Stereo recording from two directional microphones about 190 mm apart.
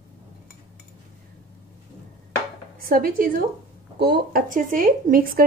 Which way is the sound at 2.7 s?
50° right (ahead or behind).